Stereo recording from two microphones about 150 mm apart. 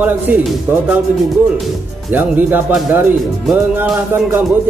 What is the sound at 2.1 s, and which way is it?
Music, 10° right (ahead or behind).